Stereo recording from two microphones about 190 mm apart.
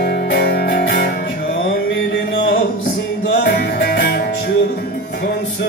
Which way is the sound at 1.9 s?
90° left.